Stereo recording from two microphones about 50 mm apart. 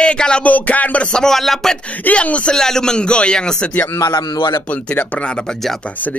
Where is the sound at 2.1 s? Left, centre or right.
Left.